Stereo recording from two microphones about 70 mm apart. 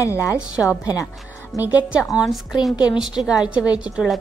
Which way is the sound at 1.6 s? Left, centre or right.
Right.